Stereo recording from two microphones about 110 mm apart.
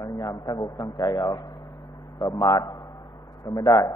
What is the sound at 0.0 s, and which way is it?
A man's voice, 35° left (ahead or behind).